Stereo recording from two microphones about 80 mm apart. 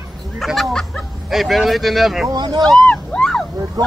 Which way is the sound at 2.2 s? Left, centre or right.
Right.